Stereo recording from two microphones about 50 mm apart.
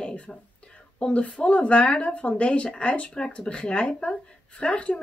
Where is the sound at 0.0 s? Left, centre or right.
Left.